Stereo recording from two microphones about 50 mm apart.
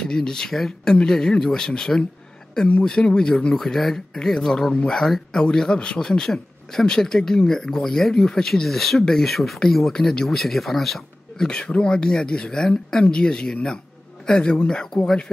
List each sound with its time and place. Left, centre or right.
0.0 s speech: centre
11.3 s speech: centre